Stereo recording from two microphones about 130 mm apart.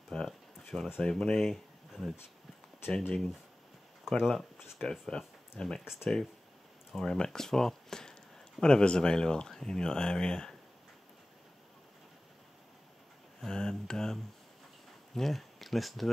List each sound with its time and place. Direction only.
0.1 s a sound: 5° left (ahead or behind)
0.9 s speech: 5° left (ahead or behind)
13.4 s speech: 5° left (ahead or behind)